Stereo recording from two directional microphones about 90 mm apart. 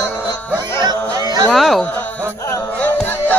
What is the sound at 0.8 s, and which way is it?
Music, 50° right (ahead or behind).